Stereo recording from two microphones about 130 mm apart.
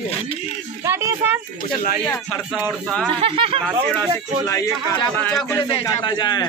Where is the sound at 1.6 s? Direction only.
90° left.